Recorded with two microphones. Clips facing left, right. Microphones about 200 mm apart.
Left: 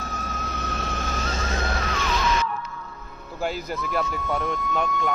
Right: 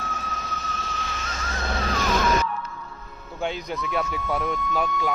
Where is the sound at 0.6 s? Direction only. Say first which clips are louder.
Left 4 dB; 65° left (ahead or behind).